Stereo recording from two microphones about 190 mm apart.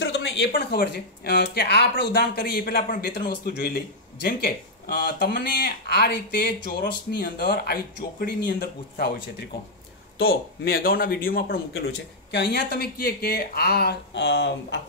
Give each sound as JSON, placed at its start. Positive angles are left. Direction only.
{"t": 0.0, "sound": "speech", "side_deg": 70}
{"t": 10.6, "sound": "speech", "side_deg": 50}
{"t": 11.7, "sound": "speech", "side_deg": 60}